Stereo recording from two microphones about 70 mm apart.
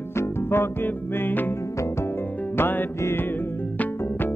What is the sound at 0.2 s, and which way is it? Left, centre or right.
Music, left.